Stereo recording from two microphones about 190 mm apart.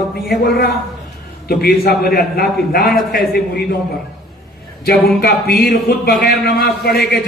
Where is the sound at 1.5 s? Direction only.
55° left (ahead or behind).